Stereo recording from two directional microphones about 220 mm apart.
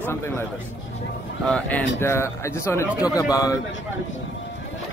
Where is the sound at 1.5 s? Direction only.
5° left (ahead or behind).